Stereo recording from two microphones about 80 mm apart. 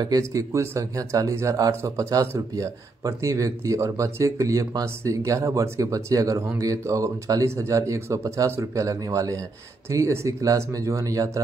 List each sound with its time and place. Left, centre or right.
0.2 s speech: right
7.4 s speech: right